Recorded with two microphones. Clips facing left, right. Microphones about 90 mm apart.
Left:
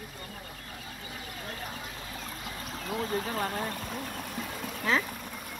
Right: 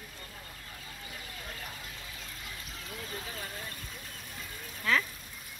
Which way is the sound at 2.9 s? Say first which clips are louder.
Left 11 dB; 55° left (ahead or behind).